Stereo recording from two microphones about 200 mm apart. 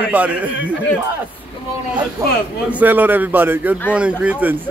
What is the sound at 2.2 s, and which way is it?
A man's voice, 15° right (ahead or behind).